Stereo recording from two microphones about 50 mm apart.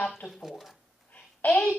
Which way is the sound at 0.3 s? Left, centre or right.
Centre.